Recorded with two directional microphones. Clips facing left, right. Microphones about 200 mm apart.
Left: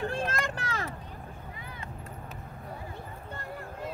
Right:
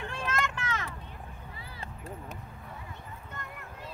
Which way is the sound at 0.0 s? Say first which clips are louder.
Left 3 dB; 35° left (ahead or behind).